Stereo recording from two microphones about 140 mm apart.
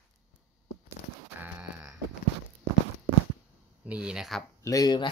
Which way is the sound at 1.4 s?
10° right (ahead or behind).